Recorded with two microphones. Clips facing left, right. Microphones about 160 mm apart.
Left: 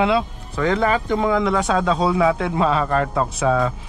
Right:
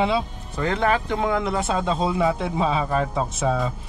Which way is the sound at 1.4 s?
90° left.